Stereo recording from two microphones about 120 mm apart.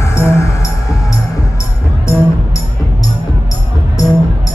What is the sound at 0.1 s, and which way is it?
Music, 25° left (ahead or behind).